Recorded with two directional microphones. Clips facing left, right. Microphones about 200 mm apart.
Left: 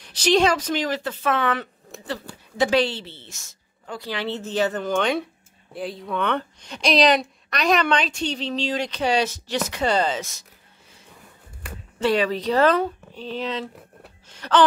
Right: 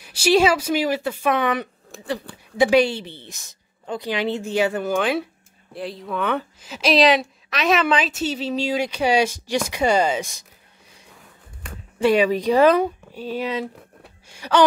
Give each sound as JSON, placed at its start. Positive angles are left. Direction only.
{"t": 0.0, "sound": "a woman's voice", "side_deg": -10}
{"t": 11.1, "sound": "a sound", "side_deg": 5}
{"t": 12.0, "sound": "a woman's voice", "side_deg": -10}
{"t": 14.3, "sound": "wail", "side_deg": -10}